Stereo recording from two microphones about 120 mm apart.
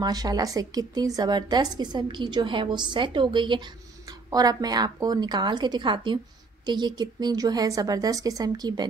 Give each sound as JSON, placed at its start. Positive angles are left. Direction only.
{"t": 0.0, "sound": "a woman's voice", "side_deg": -35}